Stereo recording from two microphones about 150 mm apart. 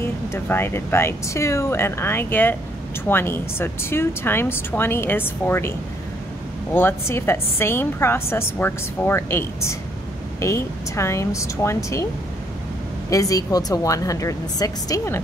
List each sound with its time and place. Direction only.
0.0 s a woman's voice: 15° left (ahead or behind)
13.1 s a woman's voice: 20° left (ahead or behind)